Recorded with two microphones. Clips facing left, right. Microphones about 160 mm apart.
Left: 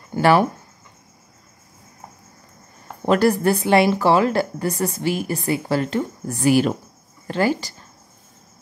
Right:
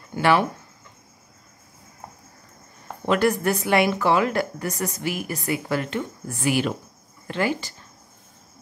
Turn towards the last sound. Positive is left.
turn(degrees=40)  # may be behind; listen again after turning